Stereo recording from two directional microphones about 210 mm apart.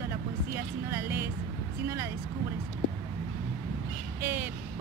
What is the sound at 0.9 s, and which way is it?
Speech, 10° right (ahead or behind).